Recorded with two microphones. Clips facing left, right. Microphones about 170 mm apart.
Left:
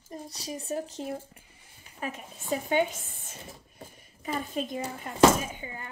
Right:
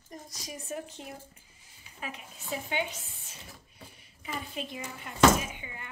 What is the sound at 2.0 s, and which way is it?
Speech, 45° left (ahead or behind).